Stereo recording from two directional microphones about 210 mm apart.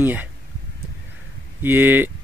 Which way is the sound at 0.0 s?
10° right (ahead or behind).